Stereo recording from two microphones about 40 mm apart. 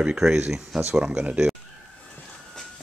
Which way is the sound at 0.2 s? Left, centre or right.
Centre.